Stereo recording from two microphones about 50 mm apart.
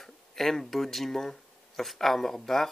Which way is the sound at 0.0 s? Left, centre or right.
Centre.